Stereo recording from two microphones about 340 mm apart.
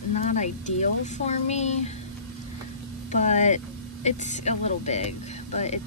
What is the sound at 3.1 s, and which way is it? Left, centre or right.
Speech, left.